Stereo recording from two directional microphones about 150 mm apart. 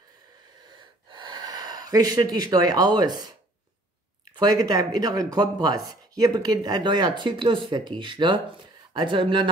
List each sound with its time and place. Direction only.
0.7 s gasp: 30° right (ahead or behind)
4.4 s speech: 25° right (ahead or behind)